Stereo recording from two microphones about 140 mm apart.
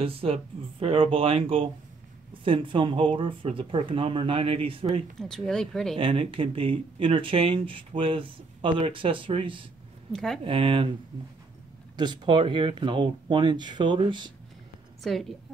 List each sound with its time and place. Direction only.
0.0 s speech: 40° right (ahead or behind)
5.2 s speech: 5° left (ahead or behind)
5.9 s speech: 40° right (ahead or behind)
10.1 s speech: 5° left (ahead or behind)
10.4 s speech: 40° right (ahead or behind)
12.0 s speech: 35° right (ahead or behind)
15.0 s speech: centre (ahead or behind)